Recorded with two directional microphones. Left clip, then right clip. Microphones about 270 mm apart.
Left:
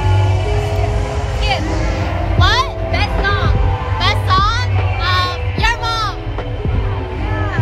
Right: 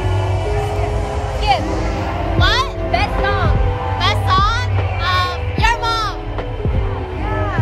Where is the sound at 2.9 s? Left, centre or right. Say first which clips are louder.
Right 1 dB; right.